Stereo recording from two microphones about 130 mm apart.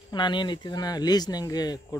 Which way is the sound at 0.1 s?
35° left (ahead or behind).